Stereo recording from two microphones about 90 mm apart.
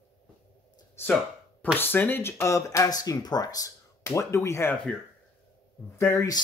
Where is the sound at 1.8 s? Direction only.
20° left (ahead or behind).